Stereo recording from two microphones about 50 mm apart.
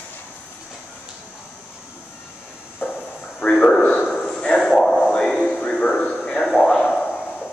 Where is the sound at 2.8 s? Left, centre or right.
Left.